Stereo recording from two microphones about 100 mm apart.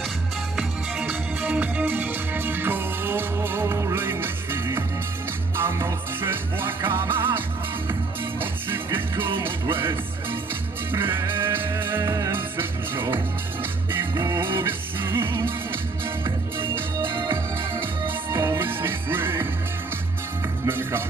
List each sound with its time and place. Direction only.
1.0 s music: 20° right (ahead or behind)
12.0 s music: 35° right (ahead or behind)
12.3 s music: 20° right (ahead or behind)
14.3 s music: 25° right (ahead or behind)
16.3 s music: 25° right (ahead or behind)
20.6 s music: 20° right (ahead or behind)